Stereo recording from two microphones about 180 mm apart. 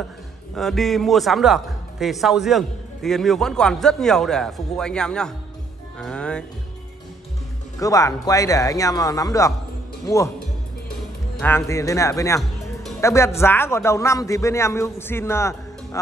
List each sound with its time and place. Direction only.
0.6 s speech: centre (ahead or behind)
7.8 s a man's voice: 20° left (ahead or behind)
11.3 s a man's voice: 10° left (ahead or behind)